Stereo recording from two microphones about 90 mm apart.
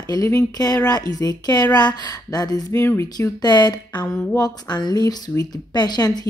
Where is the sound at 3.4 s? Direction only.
50° left (ahead or behind).